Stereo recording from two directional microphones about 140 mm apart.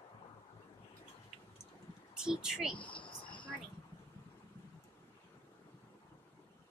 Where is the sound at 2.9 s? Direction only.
35° left (ahead or behind).